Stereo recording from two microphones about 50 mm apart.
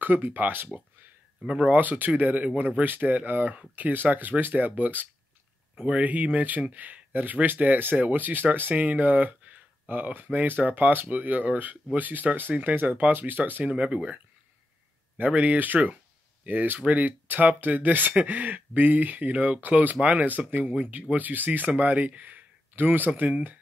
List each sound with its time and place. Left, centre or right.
0.0 s speech: right
13.7 s speech: right